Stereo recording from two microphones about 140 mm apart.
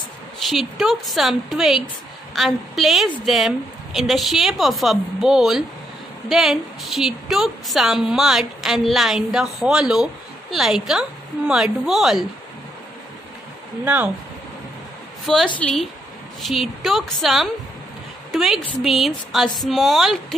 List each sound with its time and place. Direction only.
0.4 s a woman's voice: centre (ahead or behind)
13.8 s speech: 15° right (ahead or behind)
15.3 s a woman's voice: centre (ahead or behind)